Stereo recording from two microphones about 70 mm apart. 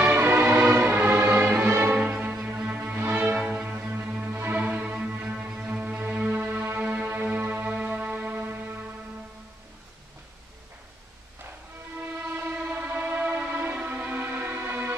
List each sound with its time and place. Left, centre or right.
0.0 s music: right
2.0 s music: centre
3.4 s music: centre
4.6 s music: centre
12.0 s train: right
14.2 s music: right